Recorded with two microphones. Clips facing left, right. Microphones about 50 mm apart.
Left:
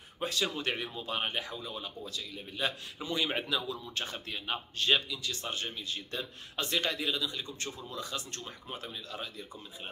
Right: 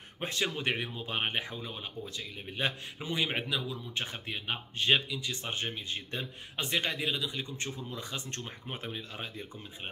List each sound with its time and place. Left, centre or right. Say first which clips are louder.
0.2 s speech: even; right
3.3 s speech: left 1 dB; centre
3.9 s speech: right 1 dB; right